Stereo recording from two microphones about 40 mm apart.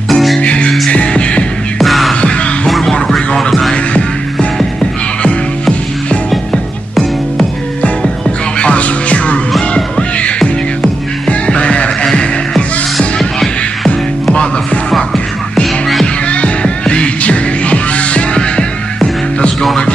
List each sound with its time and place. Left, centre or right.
0.1 s music: centre
0.4 s music: left
1.8 s music: centre
2.2 s music: left
2.8 s music: centre
3.7 s music: left
6.5 s music: centre
8.5 s music: left
11.2 s music: left
14.3 s music: left
15.6 s music: centre
16.3 s music: left